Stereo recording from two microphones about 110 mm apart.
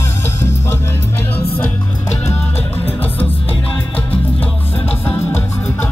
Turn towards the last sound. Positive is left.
turn(degrees=15)  # may be behind; listen again after turning